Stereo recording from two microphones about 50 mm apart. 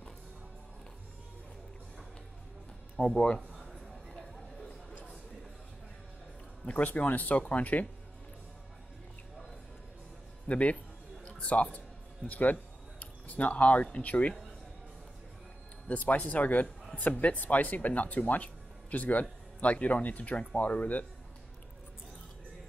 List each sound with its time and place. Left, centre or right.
3.0 s speech: centre
4.1 s a sound: centre
6.6 s a man's voice: left
10.5 s speech: left
15.9 s speech: left